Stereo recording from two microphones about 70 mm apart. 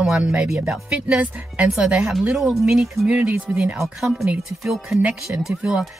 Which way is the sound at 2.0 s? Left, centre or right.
Centre.